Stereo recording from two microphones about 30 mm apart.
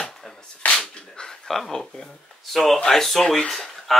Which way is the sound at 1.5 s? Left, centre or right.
Centre.